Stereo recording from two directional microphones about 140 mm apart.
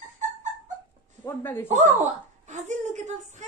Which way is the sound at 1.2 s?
15° left (ahead or behind).